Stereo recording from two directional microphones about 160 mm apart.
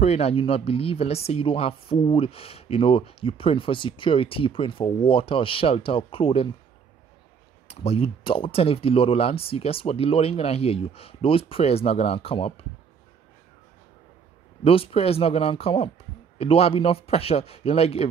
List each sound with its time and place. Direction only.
0.0 s speech: 40° left (ahead or behind)
7.6 s speech: 40° left (ahead or behind)
14.6 s speech: 35° left (ahead or behind)